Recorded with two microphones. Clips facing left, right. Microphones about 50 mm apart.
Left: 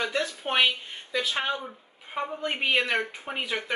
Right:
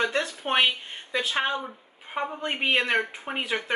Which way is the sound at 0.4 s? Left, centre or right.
Centre.